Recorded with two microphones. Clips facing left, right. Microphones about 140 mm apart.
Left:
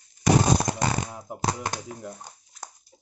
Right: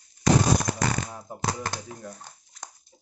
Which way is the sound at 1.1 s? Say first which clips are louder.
Left 2 dB; 15° left (ahead or behind).